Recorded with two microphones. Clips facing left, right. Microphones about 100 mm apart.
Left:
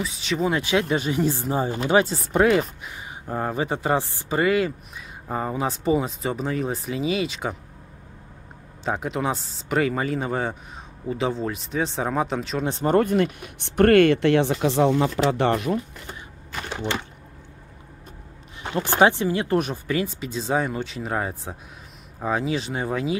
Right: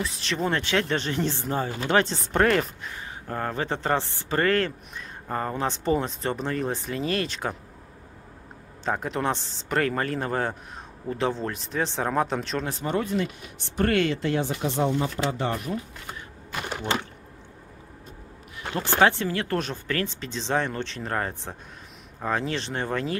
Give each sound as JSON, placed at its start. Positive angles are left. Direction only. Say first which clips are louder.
{"t": 0.0, "sound": "speech", "louder": "left 3 dB", "side_deg": 0}
{"t": 8.8, "sound": "speech", "louder": "left 1 dB", "side_deg": 5}
{"t": 12.8, "sound": "speech", "louder": "left 8 dB", "side_deg": 50}
{"t": 18.6, "sound": "speech", "louder": "left 3 dB", "side_deg": 15}